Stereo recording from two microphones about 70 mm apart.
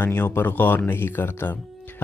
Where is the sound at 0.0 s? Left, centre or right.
Left.